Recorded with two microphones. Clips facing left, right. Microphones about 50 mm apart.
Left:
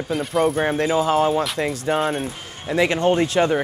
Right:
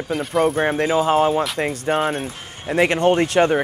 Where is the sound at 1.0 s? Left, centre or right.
Right.